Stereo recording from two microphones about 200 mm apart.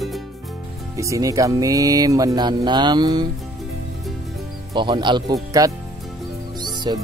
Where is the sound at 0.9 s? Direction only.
15° right (ahead or behind).